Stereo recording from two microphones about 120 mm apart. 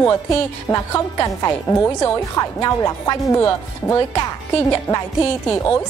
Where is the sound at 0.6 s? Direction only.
25° left (ahead or behind).